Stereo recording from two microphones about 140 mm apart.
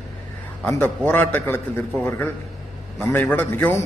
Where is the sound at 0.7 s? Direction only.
15° left (ahead or behind).